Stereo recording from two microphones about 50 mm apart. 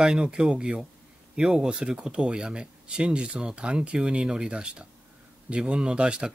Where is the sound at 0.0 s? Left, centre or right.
Centre.